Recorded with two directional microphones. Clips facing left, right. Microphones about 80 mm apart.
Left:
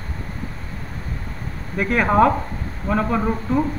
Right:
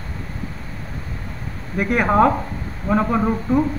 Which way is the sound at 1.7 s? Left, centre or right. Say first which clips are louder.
Even; centre.